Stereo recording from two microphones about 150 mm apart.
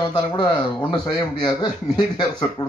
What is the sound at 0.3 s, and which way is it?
Speech, 30° left (ahead or behind).